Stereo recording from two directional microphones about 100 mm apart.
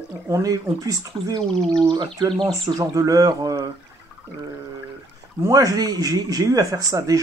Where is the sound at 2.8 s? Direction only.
35° right (ahead or behind).